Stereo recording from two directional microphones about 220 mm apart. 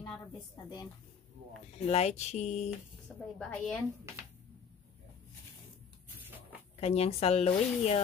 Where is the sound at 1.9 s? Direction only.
30° left (ahead or behind).